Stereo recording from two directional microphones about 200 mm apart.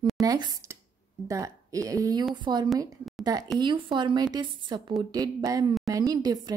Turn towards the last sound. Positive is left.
turn(degrees=-20)  # may be behind; listen again after turning